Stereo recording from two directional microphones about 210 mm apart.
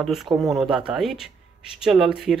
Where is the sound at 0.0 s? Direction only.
Centre (ahead or behind).